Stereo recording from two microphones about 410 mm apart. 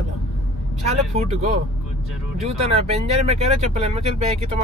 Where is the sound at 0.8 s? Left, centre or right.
Centre.